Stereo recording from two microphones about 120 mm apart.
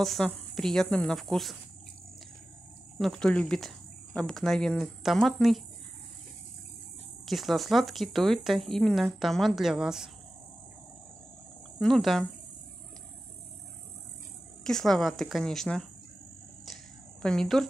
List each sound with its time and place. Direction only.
0.0 s speech: 5° left (ahead or behind)
3.0 s speech: 5° left (ahead or behind)
7.2 s speech: centre (ahead or behind)
11.8 s speech: centre (ahead or behind)
14.6 s speech: 5° left (ahead or behind)
17.2 s speech: 5° left (ahead or behind)